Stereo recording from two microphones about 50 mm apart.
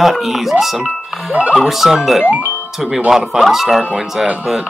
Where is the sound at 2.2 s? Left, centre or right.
Right.